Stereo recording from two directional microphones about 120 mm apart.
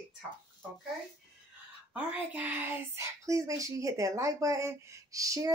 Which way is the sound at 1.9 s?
15° right (ahead or behind).